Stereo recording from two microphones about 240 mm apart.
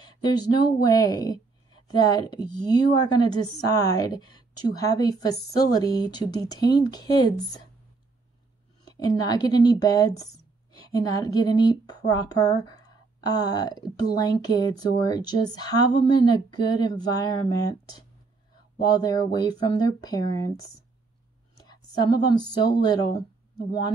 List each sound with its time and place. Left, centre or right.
0.0 s speech: centre
8.8 s speech: centre
21.5 s a woman's voice: centre